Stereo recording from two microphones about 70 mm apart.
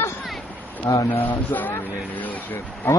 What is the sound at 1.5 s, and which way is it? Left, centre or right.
Speech, left.